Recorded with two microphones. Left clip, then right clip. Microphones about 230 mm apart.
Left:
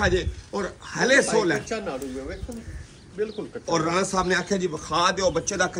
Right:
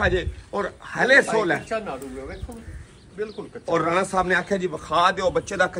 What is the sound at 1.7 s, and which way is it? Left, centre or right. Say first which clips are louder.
Speech: right 1 dB; right.